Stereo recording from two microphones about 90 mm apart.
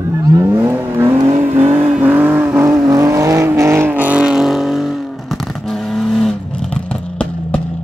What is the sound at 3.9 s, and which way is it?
Vehicle, 15° right (ahead or behind).